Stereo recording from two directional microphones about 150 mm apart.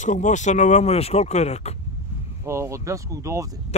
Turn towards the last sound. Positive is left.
turn(degrees=-20)  # may be behind; listen again after turning